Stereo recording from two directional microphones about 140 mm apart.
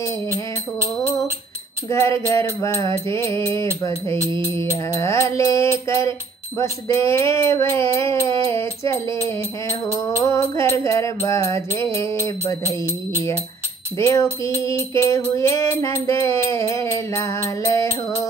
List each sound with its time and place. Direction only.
0.7 s music: 15° right (ahead or behind)
1.9 s music: 20° left (ahead or behind)
13.9 s music: 20° left (ahead or behind)